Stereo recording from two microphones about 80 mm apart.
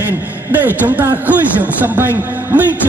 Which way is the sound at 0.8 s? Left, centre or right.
Centre.